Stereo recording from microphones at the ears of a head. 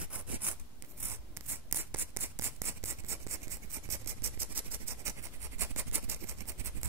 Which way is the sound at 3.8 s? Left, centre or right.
Right.